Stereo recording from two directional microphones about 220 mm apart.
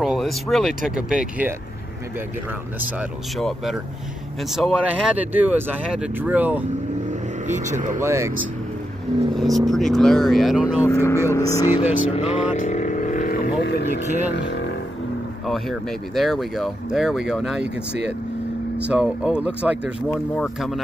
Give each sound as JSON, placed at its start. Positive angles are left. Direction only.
{"t": 0.0, "sound": "speech", "side_deg": 0}
{"t": 3.0, "sound": "speech", "side_deg": 0}
{"t": 7.1, "sound": "vehicle", "side_deg": -35}
{"t": 8.0, "sound": "speech", "side_deg": -10}
{"t": 9.4, "sound": "speech", "side_deg": 0}
{"t": 10.9, "sound": "speech", "side_deg": 10}
{"t": 12.1, "sound": "vehicle", "side_deg": 30}
{"t": 15.4, "sound": "speech", "side_deg": 0}
{"t": 18.9, "sound": "speech", "side_deg": -5}